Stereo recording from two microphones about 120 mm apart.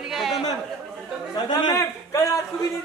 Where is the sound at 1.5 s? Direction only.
35° left (ahead or behind).